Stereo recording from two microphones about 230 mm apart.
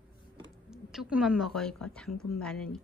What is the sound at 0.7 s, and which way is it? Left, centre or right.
A woman's voice, centre.